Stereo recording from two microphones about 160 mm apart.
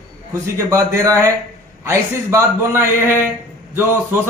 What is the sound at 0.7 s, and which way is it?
A man's voice, 20° right (ahead or behind).